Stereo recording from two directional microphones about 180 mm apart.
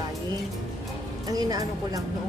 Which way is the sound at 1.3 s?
20° right (ahead or behind).